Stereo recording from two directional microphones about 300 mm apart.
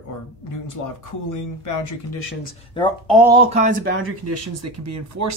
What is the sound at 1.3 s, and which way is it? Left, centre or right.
Speech, left.